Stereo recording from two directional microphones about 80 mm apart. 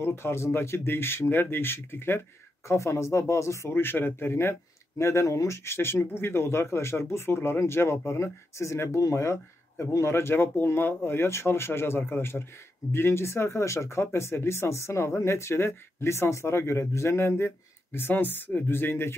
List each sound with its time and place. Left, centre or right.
0.0 s speech: left